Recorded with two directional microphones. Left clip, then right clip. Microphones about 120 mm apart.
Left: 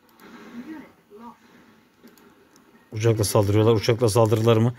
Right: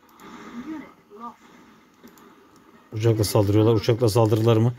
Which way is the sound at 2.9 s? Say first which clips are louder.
Even; 10° left (ahead or behind).